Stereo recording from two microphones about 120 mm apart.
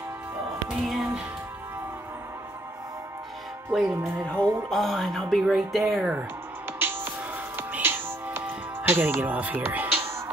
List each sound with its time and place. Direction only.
0.7 s music: 5° right (ahead or behind)
3.7 s a woman's voice: centre (ahead or behind)
6.8 s music: 20° right (ahead or behind)